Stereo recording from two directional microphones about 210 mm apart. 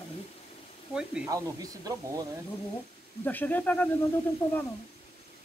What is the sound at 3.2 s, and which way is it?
Speech, 10° left (ahead or behind).